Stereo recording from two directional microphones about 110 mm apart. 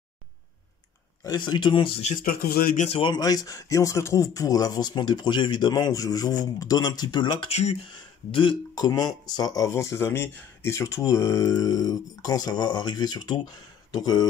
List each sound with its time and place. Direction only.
1.2 s speech: 40° left (ahead or behind)
3.0 s speech: 40° left (ahead or behind)
7.4 s speech: 80° left
7.9 s speech: 50° left (ahead or behind)
8.7 s speech: 35° left (ahead or behind)